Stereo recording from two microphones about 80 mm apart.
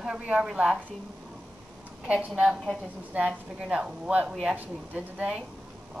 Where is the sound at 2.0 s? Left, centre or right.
Centre.